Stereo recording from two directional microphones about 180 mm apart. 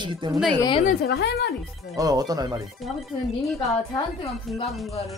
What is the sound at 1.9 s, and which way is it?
Speech, 20° right (ahead or behind).